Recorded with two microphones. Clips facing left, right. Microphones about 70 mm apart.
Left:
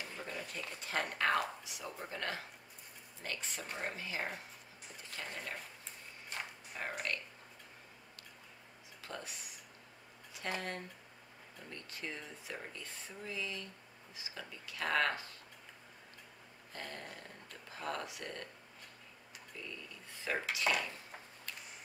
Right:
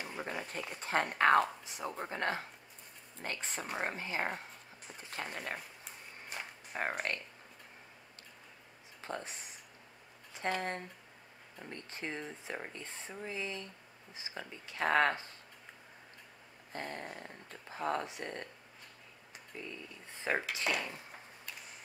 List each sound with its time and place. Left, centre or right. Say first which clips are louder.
0.0 s a sound: right 4 dB; right
0.7 s speech: right 6 dB; right
6.7 s speech: right 5 dB; right
9.0 s speech: right 5 dB; right
11.7 s speech: right 4 dB; right
16.7 s speech: right 5 dB; right
19.5 s speech: right 3 dB; right
20.2 s dishes: right 4 dB; right
20.7 s dishes: left 1 dB; centre